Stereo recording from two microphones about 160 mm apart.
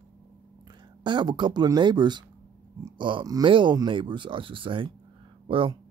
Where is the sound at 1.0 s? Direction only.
30° right (ahead or behind).